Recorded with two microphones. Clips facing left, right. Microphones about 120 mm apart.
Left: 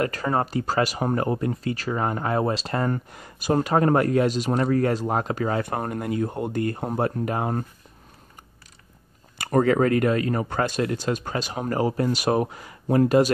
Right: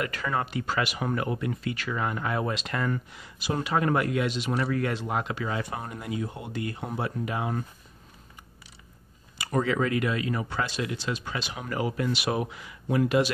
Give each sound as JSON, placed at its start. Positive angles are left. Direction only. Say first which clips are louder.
{"t": 0.0, "sound": "speech", "louder": "left 5 dB", "side_deg": 40}
{"t": 9.4, "sound": "speech", "louder": "left 7 dB", "side_deg": 50}